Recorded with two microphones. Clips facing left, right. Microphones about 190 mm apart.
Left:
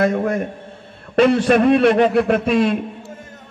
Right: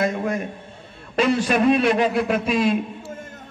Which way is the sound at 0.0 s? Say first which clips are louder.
Left 5 dB; 55° left (ahead or behind).